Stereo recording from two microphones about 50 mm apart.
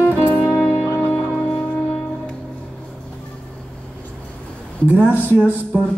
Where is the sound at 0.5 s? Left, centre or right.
Centre.